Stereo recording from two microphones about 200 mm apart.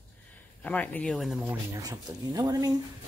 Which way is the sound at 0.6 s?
10° left (ahead or behind).